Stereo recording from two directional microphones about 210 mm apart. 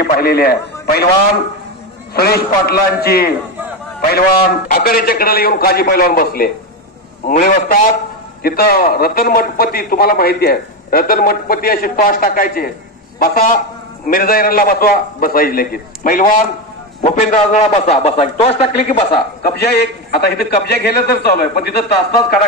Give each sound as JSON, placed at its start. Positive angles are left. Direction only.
{"t": 0.0, "sound": "a man's voice", "side_deg": 45}
{"t": 2.1, "sound": "a man's voice", "side_deg": 50}
{"t": 14.0, "sound": "a man's voice", "side_deg": 45}
{"t": 19.4, "sound": "a man's voice", "side_deg": 50}